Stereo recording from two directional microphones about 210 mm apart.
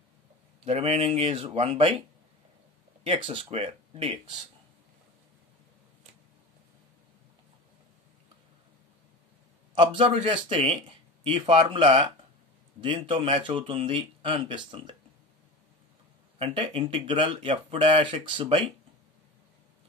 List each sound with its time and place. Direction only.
0.7 s speech: 30° right (ahead or behind)
9.8 s speech: 25° right (ahead or behind)
16.3 s speech: 25° right (ahead or behind)